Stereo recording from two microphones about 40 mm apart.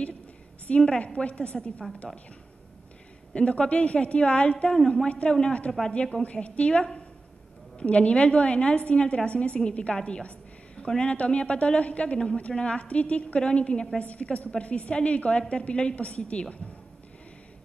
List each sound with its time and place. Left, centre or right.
0.7 s a woman's voice: left
3.3 s a woman's voice: left
5.7 s speech: centre
6.2 s a woman's voice: left